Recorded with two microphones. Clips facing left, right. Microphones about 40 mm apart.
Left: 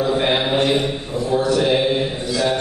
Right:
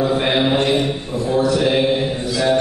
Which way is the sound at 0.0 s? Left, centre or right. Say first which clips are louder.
Right 1 dB; centre.